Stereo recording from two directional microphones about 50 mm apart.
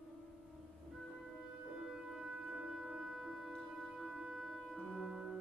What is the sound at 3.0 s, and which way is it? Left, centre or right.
Music, centre.